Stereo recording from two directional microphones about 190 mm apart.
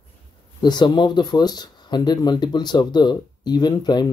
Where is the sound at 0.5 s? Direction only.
20° left (ahead or behind).